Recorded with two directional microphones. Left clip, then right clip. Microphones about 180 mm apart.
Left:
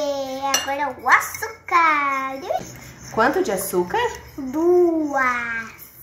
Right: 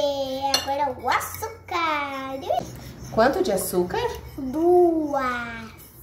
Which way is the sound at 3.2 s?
20° right (ahead or behind).